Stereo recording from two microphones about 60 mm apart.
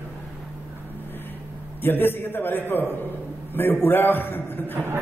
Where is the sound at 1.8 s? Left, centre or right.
Left.